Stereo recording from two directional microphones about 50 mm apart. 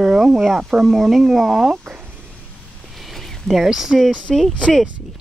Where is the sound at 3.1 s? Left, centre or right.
Centre.